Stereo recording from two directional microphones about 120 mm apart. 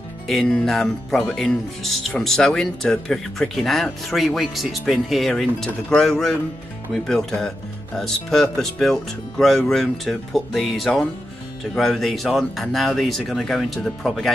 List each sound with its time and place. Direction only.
0.3 s speech: 5° left (ahead or behind)